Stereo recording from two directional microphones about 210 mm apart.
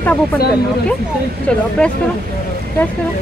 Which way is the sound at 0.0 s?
5° left (ahead or behind).